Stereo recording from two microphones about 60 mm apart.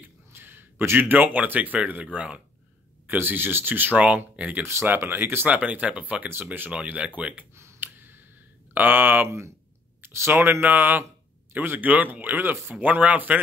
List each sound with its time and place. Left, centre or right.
0.3 s speech: right; by 2.4 s centre
3.1 s speech: right
4.8 s speech: right
5.5 s speech: right
6.7 s speech: centre
7.8 s a sound: right
8.7 s speech: right
10.0 s speech: right